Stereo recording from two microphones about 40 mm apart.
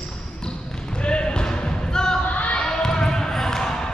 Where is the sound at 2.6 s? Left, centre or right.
Centre.